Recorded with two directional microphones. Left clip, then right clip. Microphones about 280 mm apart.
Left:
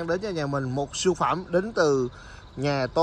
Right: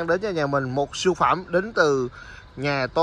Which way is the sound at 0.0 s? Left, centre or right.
Centre.